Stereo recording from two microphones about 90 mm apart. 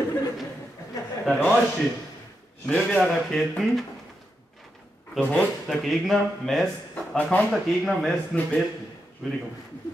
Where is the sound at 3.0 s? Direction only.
Centre (ahead or behind).